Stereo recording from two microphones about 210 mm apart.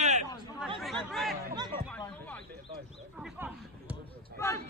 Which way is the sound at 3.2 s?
5° right (ahead or behind).